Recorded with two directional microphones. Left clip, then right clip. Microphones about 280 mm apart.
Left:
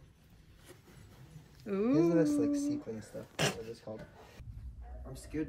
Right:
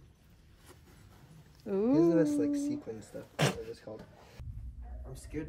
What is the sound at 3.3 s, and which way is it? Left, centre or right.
Speech, right.